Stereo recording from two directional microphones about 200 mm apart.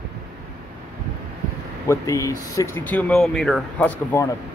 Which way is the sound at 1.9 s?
15° left (ahead or behind).